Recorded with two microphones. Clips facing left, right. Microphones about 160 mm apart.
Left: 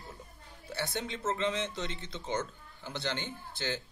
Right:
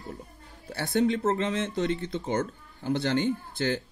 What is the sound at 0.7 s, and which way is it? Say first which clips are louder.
Speech: right 11 dB; 45° right (ahead or behind).